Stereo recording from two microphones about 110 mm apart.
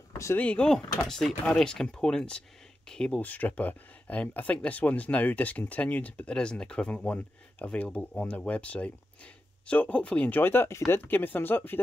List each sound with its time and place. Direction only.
0.4 s speech: 10° left (ahead or behind)